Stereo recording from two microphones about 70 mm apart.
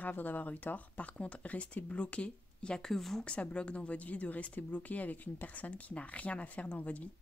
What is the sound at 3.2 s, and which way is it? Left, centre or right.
Speech, centre.